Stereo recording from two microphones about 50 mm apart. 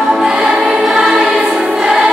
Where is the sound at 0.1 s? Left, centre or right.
Centre.